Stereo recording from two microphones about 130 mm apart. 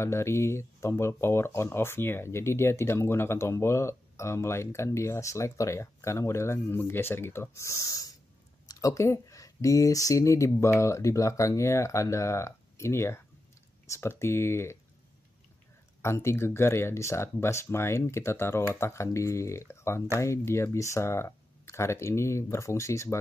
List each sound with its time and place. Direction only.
0.0 s speech: 20° left (ahead or behind)
16.0 s speech: 20° left (ahead or behind)